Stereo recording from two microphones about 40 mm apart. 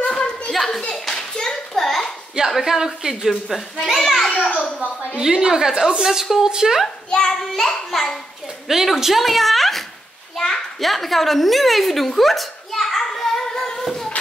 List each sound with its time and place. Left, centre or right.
0.0 s a sound: left
0.5 s clapping: centre
1.8 s a sound: centre
2.6 s a woman's voice: centre
4.0 s a child's voice: centre
4.4 s a child's voice: left
5.2 s a woman's voice: centre
7.1 s child singing: left
7.4 s a child's voice: centre
8.6 s a woman's voice: centre
10.3 s children playing: centre
10.8 s a woman's voice: centre
12.2 s a sound: centre